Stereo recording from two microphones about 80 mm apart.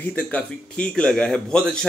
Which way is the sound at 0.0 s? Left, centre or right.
Centre.